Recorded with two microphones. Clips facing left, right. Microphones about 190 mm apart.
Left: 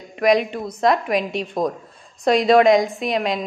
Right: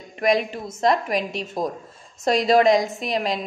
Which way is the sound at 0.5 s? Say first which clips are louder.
Left 4 dB; 25° right (ahead or behind).